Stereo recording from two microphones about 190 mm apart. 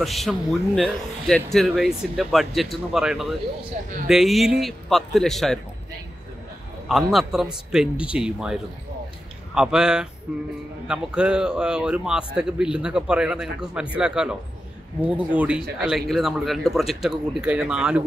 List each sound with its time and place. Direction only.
0.0 s speech: centre (ahead or behind)
3.8 s speech: 45° right (ahead or behind)
4.1 s speech: centre (ahead or behind)
6.9 s speech: centre (ahead or behind)